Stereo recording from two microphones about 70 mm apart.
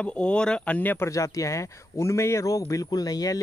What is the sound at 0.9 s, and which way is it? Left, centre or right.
Speech, left.